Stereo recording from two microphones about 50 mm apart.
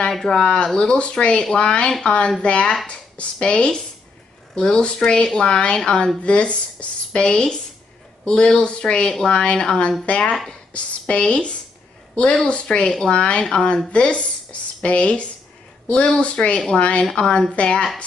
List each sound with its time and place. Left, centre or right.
0.1 s speech: centre
0.7 s a woman's voice: left